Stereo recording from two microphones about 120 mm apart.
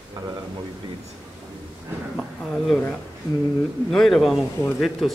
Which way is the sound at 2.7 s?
10° left (ahead or behind).